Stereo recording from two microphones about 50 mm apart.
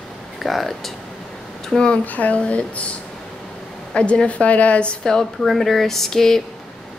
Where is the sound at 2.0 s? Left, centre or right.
Left.